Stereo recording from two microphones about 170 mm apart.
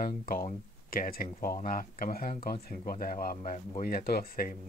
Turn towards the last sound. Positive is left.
turn(degrees=60)  # may be behind; listen again after turning